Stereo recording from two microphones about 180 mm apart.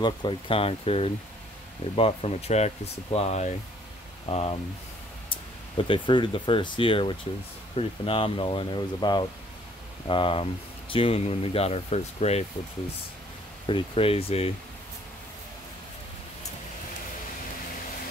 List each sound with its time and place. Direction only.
0.0 s speech: 25° left (ahead or behind)
13.7 s speech: 30° left (ahead or behind)